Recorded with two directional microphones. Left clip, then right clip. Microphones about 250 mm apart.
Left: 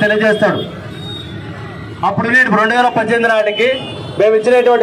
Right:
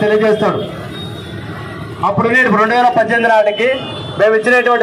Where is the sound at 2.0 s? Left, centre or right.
Left.